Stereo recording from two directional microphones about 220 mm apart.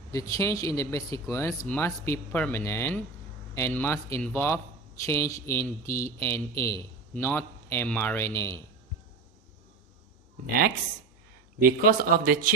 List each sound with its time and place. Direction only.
0.1 s speech: 15° left (ahead or behind)
5.9 s speech: 40° left (ahead or behind)
6.1 s speech: 15° left (ahead or behind)
11.6 s speech: 40° right (ahead or behind)